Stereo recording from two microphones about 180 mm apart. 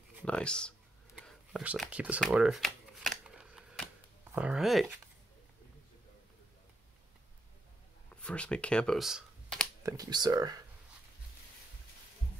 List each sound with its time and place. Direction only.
0.2 s a sound: 5° left (ahead or behind)
2.3 s shuffling cards: 5° right (ahead or behind)
4.4 s speech: 5° right (ahead or behind)
8.2 s speech: 5° left (ahead or behind)
9.8 s speech: 20° right (ahead or behind)